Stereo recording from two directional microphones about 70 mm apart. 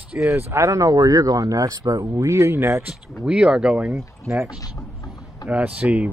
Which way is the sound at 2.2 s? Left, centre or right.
Right.